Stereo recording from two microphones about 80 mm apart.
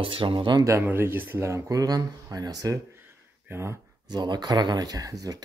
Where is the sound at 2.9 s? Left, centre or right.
Right.